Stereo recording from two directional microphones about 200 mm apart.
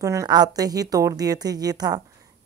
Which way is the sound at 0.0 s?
15° right (ahead or behind).